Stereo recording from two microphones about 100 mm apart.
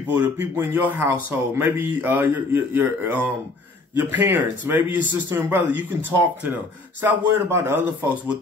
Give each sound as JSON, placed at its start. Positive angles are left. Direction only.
{"t": 0.1, "sound": "a man's voice", "side_deg": -20}